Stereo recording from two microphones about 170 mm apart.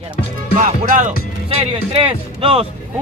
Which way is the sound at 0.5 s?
50° right (ahead or behind).